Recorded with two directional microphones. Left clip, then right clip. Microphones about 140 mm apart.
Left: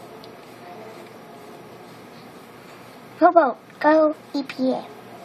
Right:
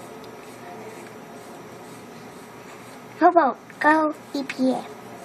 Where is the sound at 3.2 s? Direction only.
45° left (ahead or behind).